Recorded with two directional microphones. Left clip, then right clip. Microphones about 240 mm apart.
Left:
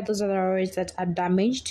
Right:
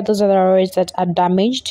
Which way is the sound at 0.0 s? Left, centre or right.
Right.